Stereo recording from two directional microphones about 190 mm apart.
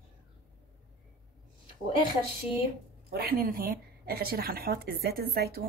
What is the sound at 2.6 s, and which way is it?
A woman's voice, 55° right (ahead or behind).